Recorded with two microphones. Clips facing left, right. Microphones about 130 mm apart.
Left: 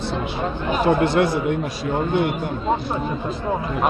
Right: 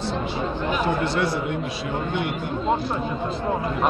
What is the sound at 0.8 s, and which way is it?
Speech, 50° left (ahead or behind).